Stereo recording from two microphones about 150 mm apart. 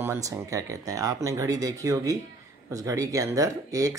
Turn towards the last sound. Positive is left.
turn(degrees=-25)  # may be behind; listen again after turning